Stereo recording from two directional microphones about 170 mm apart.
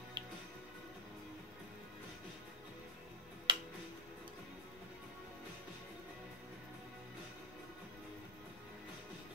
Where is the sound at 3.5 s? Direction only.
30° right (ahead or behind).